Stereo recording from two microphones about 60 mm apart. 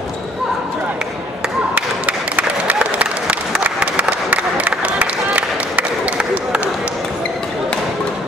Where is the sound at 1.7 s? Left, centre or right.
Right.